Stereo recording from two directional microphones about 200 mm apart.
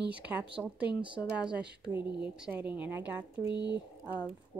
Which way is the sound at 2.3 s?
5° right (ahead or behind).